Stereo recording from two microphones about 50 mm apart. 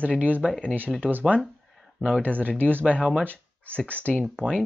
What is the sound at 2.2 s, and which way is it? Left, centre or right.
Speech, left.